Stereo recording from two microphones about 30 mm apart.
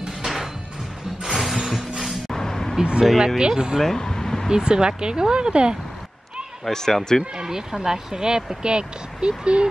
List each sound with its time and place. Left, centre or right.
0.2 s music: centre
2.3 s vehicle: centre
2.8 s speech: right
3.8 s air conditioning: centre
4.5 s speech: right
6.7 s speech: centre
7.3 s speech: right